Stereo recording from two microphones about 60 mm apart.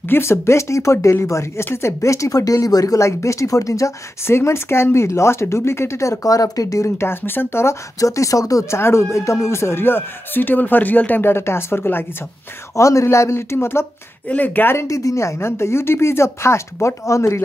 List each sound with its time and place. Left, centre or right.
0.1 s a woman's voice: left
4.4 s a woman's voice: left
7.0 s a woman's voice: left
8.0 s speech: left
8.6 s speech: left
12.7 s a woman's voice: left
14.3 s speech: left
14.8 s a woman's voice: left